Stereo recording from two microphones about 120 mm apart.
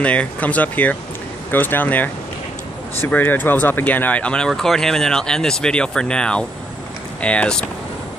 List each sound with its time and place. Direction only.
0.0 s speech: 10° left (ahead or behind)